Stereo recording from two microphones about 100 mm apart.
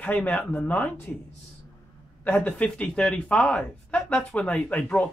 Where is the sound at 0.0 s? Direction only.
15° left (ahead or behind).